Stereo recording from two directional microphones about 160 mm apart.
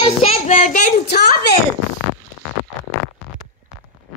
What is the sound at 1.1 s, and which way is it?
Speech, 85° left.